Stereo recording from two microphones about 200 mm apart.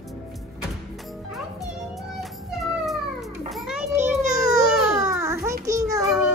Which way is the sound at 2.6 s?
Centre (ahead or behind).